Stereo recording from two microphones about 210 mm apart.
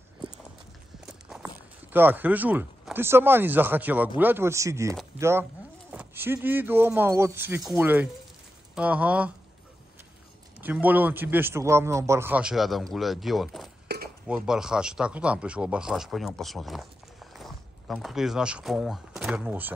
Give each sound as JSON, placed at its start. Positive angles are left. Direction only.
{"t": 1.0, "sound": "a man's voice", "side_deg": -5}
{"t": 10.6, "sound": "a man's voice", "side_deg": -10}
{"t": 13.9, "sound": "dishes", "side_deg": -50}
{"t": 14.2, "sound": "speech", "side_deg": -5}